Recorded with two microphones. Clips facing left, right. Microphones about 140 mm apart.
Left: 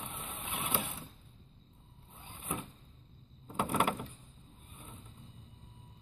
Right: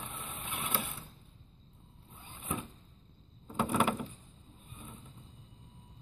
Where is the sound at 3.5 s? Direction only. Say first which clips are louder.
Right 2 dB; 5° left (ahead or behind).